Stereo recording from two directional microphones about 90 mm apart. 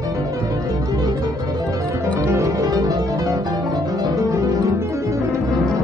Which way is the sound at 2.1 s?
40° right (ahead or behind).